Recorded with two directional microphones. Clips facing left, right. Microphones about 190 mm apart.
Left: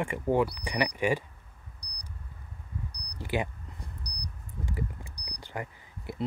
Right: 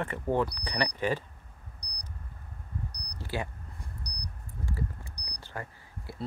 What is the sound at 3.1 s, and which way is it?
Speech, 15° left (ahead or behind).